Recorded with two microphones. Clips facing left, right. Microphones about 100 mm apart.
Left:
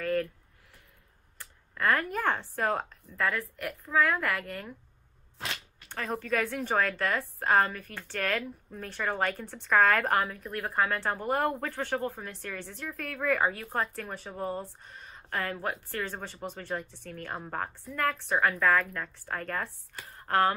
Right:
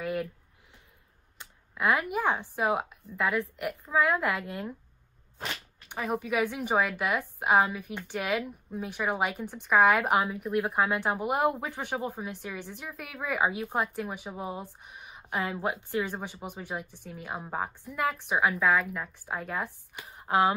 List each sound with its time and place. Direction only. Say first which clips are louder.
0.0 s a sound: left 2 dB; 15° right (ahead or behind)
1.4 s speech: right 1 dB; 15° right (ahead or behind)
5.9 s a woman's voice: right 1 dB; 10° right (ahead or behind)